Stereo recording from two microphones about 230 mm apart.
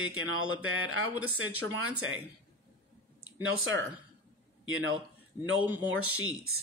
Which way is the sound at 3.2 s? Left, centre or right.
Right.